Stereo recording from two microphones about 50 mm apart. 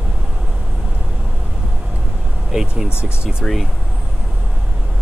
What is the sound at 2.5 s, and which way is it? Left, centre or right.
Speech, centre.